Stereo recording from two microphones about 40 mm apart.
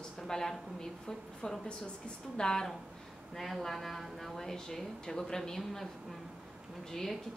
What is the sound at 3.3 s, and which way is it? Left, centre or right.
Speech, centre.